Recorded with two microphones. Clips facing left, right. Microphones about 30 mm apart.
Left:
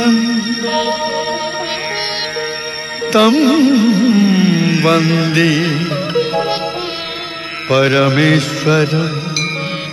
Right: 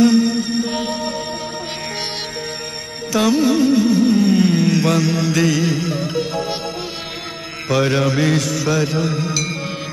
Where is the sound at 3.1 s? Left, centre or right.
Left.